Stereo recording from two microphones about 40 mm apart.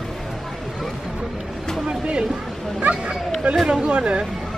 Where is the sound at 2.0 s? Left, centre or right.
Right.